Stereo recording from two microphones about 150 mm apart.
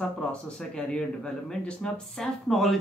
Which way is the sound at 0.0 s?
5° left (ahead or behind).